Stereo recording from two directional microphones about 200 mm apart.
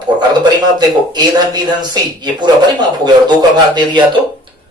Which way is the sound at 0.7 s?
20° right (ahead or behind).